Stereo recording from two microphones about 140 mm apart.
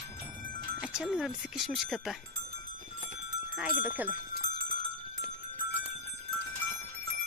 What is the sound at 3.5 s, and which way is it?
Speech, 10° right (ahead or behind).